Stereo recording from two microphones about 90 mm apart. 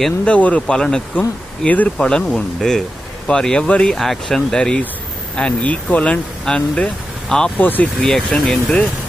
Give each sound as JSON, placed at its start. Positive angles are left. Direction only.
{"t": 0.2, "sound": "speech", "side_deg": 15}
{"t": 7.5, "sound": "speech", "side_deg": 20}
{"t": 8.0, "sound": "speech", "side_deg": 5}